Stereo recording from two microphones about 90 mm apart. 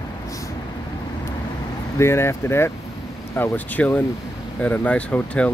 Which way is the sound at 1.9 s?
30° left (ahead or behind).